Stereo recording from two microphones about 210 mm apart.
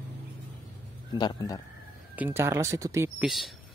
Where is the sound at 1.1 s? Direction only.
20° left (ahead or behind).